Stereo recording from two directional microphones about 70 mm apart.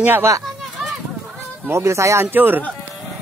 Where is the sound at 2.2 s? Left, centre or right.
Right.